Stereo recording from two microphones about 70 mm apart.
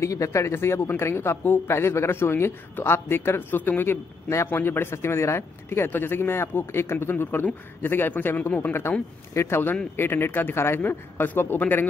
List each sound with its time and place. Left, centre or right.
0.0 s a man's voice: left